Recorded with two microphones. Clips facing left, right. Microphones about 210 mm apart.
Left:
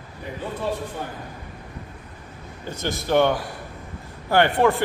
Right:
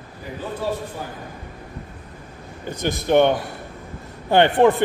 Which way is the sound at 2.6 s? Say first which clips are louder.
Right 4 dB; 15° right (ahead or behind).